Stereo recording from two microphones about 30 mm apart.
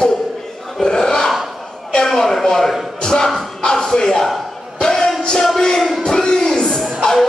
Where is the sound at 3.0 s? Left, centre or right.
Left.